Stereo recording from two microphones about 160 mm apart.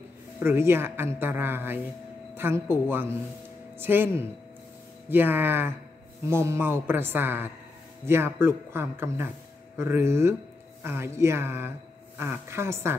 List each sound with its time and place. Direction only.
0.4 s a woman's voice: 15° right (ahead or behind)
5.1 s a woman's voice: 15° right (ahead or behind)